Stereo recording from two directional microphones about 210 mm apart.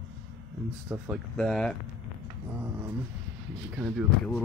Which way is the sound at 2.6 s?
10° right (ahead or behind).